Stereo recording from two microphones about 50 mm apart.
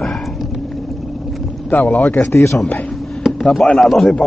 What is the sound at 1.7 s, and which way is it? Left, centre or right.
Speech, left.